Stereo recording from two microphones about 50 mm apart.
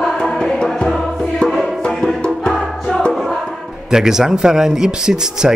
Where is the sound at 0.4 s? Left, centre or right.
Centre.